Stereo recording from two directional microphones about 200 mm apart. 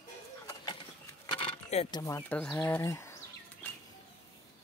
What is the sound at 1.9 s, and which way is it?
Speech, 15° left (ahead or behind).